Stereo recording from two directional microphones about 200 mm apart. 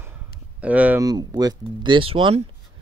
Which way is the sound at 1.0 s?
20° right (ahead or behind).